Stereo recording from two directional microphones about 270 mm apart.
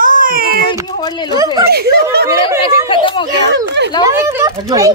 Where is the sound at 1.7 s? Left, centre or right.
Right.